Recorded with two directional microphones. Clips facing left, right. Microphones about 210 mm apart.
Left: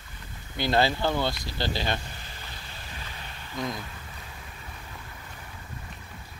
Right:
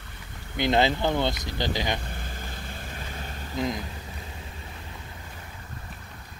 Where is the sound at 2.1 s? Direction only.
50° right (ahead or behind).